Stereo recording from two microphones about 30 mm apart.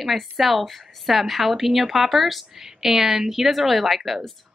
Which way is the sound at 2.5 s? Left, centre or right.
Centre.